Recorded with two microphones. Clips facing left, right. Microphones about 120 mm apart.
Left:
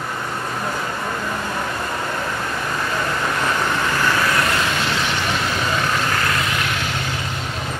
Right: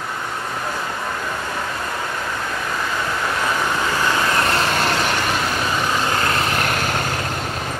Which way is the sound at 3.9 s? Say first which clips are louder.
Even; 20° right (ahead or behind).